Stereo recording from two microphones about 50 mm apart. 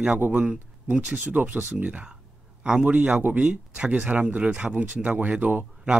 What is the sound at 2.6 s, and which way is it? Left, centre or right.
A man's voice, right.